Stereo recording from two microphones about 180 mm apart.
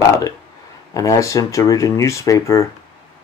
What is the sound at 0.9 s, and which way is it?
Speech, 20° left (ahead or behind).